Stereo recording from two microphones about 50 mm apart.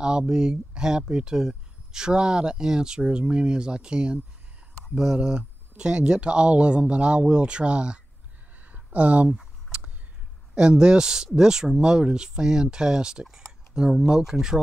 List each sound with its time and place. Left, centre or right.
0.0 s speech: centre
8.5 s a sound: right
10.5 s speech: centre